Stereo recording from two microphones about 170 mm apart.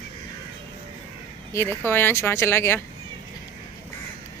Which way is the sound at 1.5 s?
15° left (ahead or behind).